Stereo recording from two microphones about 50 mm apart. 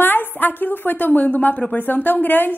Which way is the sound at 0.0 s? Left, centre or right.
Left.